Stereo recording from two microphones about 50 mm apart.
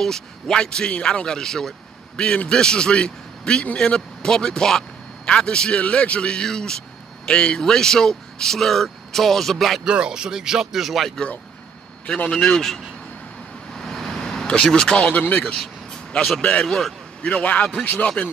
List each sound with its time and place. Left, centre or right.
0.0 s speech: centre
9.8 s speech: centre
12.3 s speech: centre
13.7 s vehicle: centre
14.6 s speech: centre
16.3 s speech: left
16.6 s speech: centre
17.2 s speech: left